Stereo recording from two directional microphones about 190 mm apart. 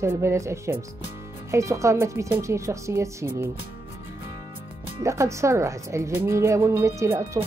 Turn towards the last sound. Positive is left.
turn(degrees=-15)  # may be behind; listen again after turning